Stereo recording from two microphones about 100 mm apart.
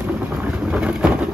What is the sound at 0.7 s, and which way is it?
Vehicle, 10° right (ahead or behind).